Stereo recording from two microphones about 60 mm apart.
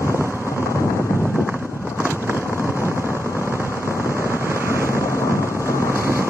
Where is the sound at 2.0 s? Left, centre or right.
Right.